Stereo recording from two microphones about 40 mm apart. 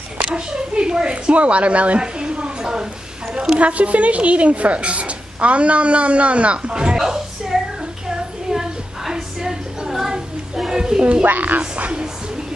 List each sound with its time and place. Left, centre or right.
0.2 s a woman's voice: right
7.0 s a sound: centre
11.0 s a woman's voice: right
11.2 s a woman's voice: right
11.6 s speech: right